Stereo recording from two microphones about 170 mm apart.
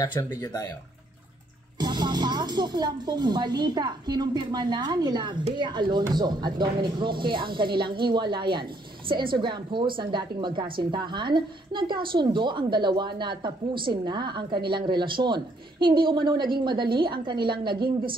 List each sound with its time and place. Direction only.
0.0 s speech: 25° left (ahead or behind)
1.8 s speech: 25° right (ahead or behind)